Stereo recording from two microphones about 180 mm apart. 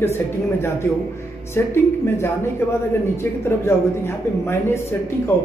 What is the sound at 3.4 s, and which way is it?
A man's voice, 15° left (ahead or behind).